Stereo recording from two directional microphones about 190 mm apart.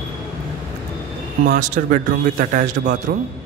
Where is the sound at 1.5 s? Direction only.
45° right (ahead or behind).